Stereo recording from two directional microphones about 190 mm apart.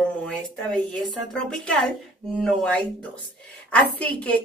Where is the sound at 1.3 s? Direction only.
5° left (ahead or behind).